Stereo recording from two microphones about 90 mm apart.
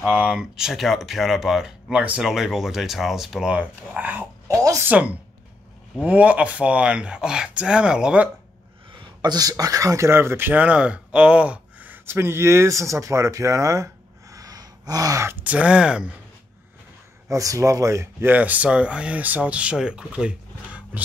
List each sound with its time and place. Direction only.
0.0 s speech: 10° right (ahead or behind)
4.5 s speech: 40° right (ahead or behind)
4.8 s speech: 15° right (ahead or behind)
9.2 s speech: 45° right (ahead or behind)
14.3 s gasp: 40° right (ahead or behind)
15.2 s speech: 20° right (ahead or behind)
17.3 s speech: 35° right (ahead or behind)
18.3 s speech: 15° right (ahead or behind)